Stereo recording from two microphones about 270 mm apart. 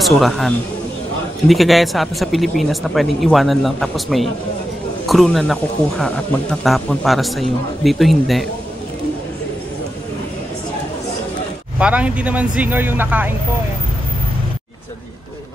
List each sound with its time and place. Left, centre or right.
0.0 s a man's voice: centre
1.5 s speech: centre
11.8 s speech: centre